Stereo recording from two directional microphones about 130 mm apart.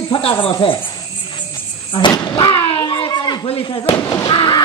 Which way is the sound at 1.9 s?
35° left (ahead or behind).